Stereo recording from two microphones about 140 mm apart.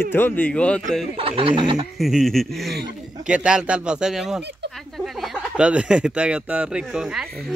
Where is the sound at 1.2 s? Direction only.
40° right (ahead or behind).